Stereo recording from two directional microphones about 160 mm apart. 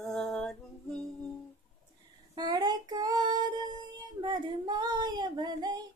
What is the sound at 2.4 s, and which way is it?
Female singing, 25° right (ahead or behind).